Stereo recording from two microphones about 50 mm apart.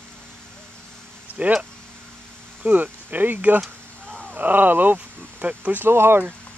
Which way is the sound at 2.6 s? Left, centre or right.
Right.